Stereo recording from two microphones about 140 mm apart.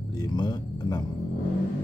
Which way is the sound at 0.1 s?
30° left (ahead or behind).